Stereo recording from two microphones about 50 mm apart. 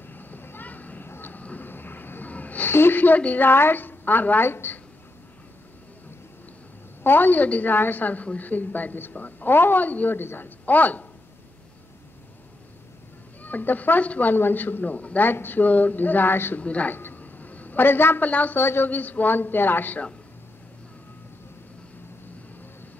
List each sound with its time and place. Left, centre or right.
0.1 s vehicle: left
1.0 s vehicle: left
1.4 s a sound: left
2.7 s a woman's voice: left
7.0 s a woman's voice: left
10.1 s a woman's voice: left
10.6 s speech: left
13.4 s a woman's voice: left
15.2 s a woman's voice: left
16.5 s speech: left
16.9 s a sound: left
18.3 s a woman's voice: left
18.6 s a woman's voice: left
18.9 s a woman's voice: left